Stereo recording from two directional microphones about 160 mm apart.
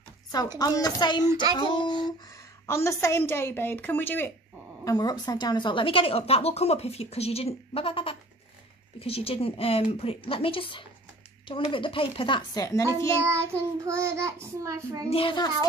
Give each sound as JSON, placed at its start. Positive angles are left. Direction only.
{"t": 0.6, "sound": "speech", "side_deg": 25}
{"t": 2.6, "sound": "a woman's voice", "side_deg": 20}
{"t": 4.8, "sound": "a woman's voice", "side_deg": 25}
{"t": 13.3, "sound": "child singing", "side_deg": -15}
{"t": 15.0, "sound": "a woman's voice", "side_deg": 35}